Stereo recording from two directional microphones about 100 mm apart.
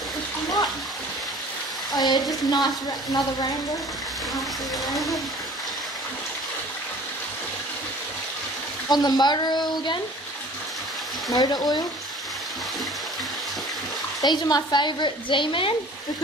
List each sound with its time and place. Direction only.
2.0 s a woman's voice: 45° left (ahead or behind)
4.8 s speech: centre (ahead or behind)
8.8 s a woman's voice: 40° left (ahead or behind)
11.3 s a woman's voice: 45° left (ahead or behind)
14.2 s a woman's voice: 45° left (ahead or behind)